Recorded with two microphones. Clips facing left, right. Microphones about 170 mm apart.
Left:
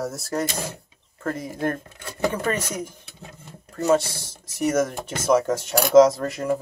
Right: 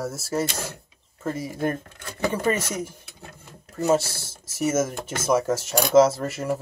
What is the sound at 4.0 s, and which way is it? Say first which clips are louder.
Speech: left 1 dB; 5° right (ahead or behind).